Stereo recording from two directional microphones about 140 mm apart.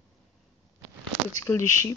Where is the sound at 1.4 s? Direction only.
20° left (ahead or behind).